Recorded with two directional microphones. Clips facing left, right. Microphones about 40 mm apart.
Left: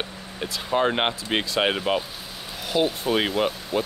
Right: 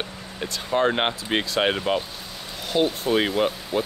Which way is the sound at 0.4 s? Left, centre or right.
Centre.